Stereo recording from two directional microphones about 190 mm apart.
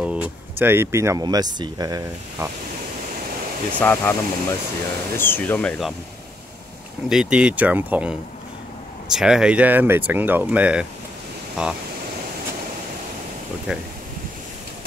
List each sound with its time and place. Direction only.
0.0 s speech: 5° right (ahead or behind)
3.8 s speech: 10° left (ahead or behind)
7.1 s speech: 5° right (ahead or behind)
13.7 s speech: 5° right (ahead or behind)